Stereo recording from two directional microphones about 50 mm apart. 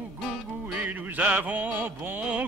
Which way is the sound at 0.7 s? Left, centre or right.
Right.